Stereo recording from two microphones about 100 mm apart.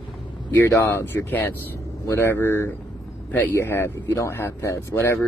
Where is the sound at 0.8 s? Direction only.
20° left (ahead or behind).